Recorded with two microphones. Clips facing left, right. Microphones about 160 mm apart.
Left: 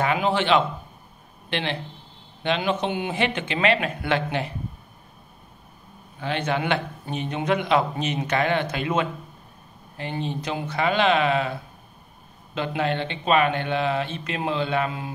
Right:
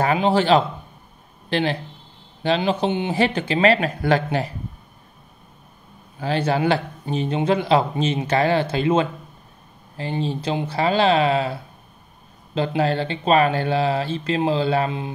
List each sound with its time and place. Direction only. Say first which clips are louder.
0.0 s speech: right 4 dB; 35° right (ahead or behind)
6.1 s speech: right 4 dB; 35° right (ahead or behind)
12.5 s speech: right 4 dB; 35° right (ahead or behind)